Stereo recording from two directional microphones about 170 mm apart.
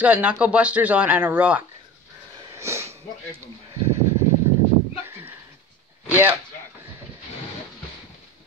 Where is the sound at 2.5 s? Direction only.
15° right (ahead or behind).